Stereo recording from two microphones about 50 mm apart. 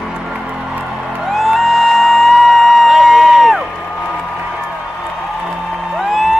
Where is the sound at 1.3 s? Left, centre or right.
Centre.